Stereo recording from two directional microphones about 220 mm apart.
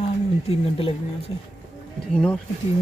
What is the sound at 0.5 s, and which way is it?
Speech, 25° left (ahead or behind).